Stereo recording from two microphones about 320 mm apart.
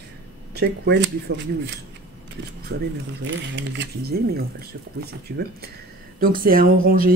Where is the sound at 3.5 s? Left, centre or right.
Right.